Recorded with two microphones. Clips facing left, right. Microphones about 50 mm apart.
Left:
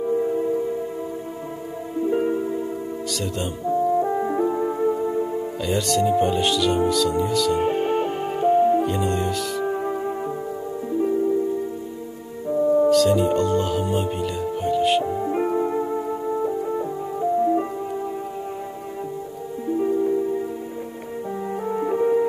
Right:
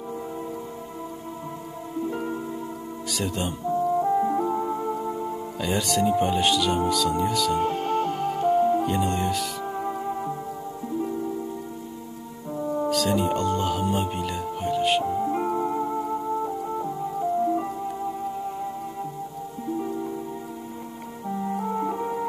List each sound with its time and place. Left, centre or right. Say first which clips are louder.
0.0 s music: left 11 dB; centre
2.0 s music: left 8 dB; left
3.1 s speech: right 1 dB; centre
3.6 s music: left 3 dB; centre
5.6 s speech: left 2 dB; centre
7.6 s music: left 3 dB; left
8.8 s speech: left 2 dB; centre
9.7 s music: left 4 dB; centre
12.4 s music: left 9 dB; centre
15.1 s music: left 2 dB; centre
19.7 s music: left 9 dB; left